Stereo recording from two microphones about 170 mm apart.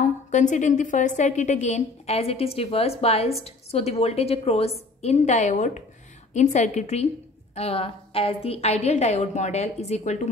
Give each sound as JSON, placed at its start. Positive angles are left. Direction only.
{"t": 0.0, "sound": "a woman's voice", "side_deg": 45}